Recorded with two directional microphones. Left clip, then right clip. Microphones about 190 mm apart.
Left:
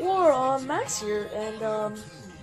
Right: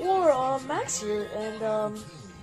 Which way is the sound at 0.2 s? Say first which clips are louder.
Left 2 dB; 20° left (ahead or behind).